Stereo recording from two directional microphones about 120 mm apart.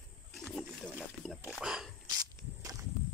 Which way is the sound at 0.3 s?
Centre (ahead or behind).